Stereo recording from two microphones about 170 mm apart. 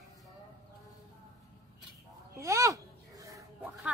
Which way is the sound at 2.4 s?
20° right (ahead or behind).